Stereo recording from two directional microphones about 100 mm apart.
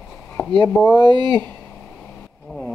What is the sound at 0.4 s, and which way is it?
Chop, 30° left (ahead or behind).